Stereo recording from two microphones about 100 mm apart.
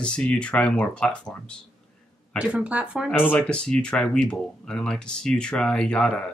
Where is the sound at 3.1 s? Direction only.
20° left (ahead or behind).